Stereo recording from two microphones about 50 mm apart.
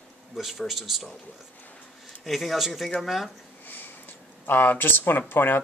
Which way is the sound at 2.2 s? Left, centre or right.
Centre.